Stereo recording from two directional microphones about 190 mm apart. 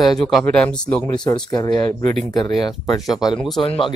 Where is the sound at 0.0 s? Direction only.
Centre (ahead or behind).